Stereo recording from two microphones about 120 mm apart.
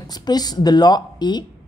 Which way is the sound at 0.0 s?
35° left (ahead or behind).